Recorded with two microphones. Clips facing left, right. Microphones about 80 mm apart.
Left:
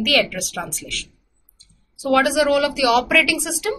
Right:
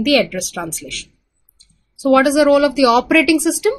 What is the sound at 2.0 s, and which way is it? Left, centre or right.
A woman's voice, right.